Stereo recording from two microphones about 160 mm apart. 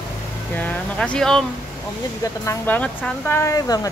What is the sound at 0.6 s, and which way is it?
Speech, 10° left (ahead or behind).